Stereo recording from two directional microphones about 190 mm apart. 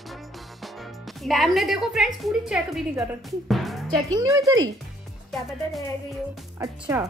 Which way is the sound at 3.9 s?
20° right (ahead or behind).